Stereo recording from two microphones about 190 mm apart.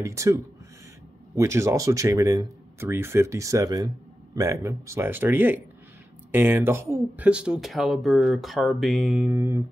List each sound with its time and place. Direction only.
0.0 s speech: 15° right (ahead or behind)